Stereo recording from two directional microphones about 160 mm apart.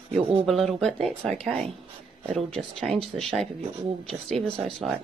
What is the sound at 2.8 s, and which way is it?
Speech, centre (ahead or behind).